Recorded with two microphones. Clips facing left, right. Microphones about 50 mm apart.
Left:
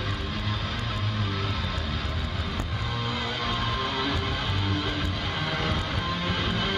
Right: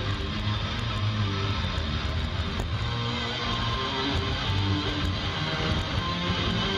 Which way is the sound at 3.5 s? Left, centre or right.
Centre.